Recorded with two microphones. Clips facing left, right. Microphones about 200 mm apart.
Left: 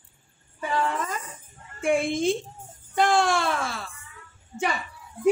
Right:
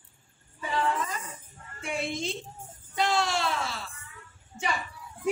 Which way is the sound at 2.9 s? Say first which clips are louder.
Left 6 dB; 50° left (ahead or behind).